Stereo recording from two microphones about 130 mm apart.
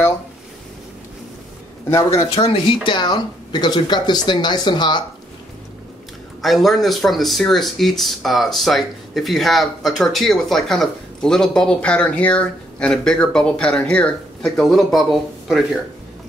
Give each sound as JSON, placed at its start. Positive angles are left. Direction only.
{"t": 2.3, "sound": "speech", "side_deg": 40}
{"t": 6.4, "sound": "speech", "side_deg": 0}